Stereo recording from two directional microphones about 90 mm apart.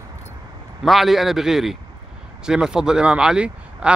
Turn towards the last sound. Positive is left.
turn(degrees=-10)  # may be behind; listen again after turning